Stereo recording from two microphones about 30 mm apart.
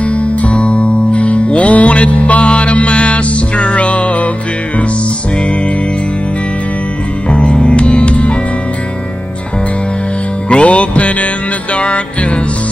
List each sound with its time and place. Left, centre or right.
0.0 s music: left
7.2 s music: left
10.5 s music: left